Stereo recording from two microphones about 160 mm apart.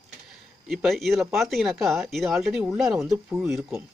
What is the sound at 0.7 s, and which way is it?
Speech, centre (ahead or behind).